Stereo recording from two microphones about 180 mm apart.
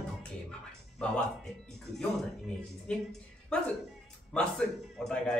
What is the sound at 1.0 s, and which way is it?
Speech, 5° left (ahead or behind).